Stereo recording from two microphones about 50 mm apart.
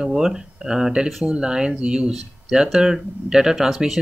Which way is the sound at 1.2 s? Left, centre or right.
Centre.